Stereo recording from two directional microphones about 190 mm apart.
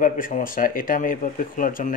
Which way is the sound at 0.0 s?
45° left (ahead or behind).